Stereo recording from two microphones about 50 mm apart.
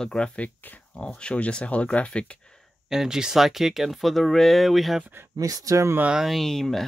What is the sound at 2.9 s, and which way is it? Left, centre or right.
Speech, centre.